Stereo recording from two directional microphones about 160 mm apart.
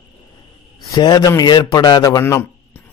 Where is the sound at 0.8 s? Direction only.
25° left (ahead or behind).